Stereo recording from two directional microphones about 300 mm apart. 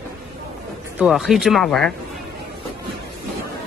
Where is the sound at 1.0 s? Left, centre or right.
Centre.